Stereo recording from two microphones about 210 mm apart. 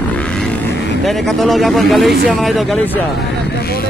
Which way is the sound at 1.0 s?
Centre (ahead or behind).